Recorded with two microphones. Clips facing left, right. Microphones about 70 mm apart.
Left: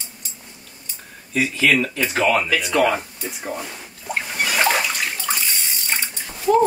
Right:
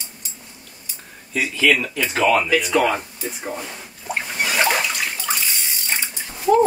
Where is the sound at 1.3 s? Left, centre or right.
Centre.